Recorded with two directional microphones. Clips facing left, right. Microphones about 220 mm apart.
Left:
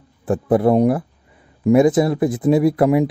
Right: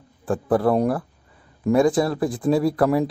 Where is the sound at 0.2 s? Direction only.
20° left (ahead or behind).